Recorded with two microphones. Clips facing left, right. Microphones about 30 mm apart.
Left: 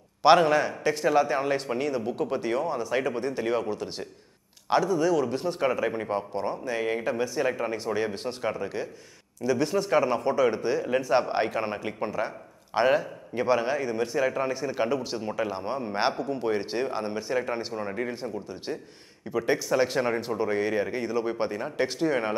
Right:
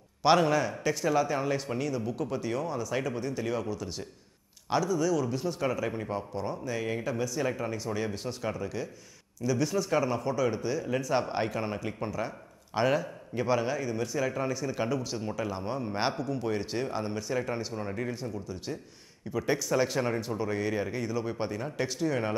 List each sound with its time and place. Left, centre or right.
0.2 s a man's voice: left
5.7 s a man's voice: left
7.7 s a man's voice: left
18.2 s speech: left
19.3 s a man's voice: centre